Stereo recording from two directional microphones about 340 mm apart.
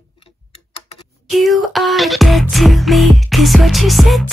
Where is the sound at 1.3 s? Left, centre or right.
Centre.